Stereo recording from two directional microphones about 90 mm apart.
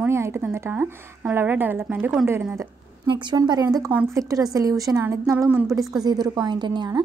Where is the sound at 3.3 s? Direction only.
50° right (ahead or behind).